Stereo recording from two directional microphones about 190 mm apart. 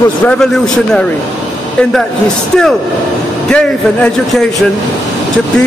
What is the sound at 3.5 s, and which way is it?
Speech, 5° left (ahead or behind).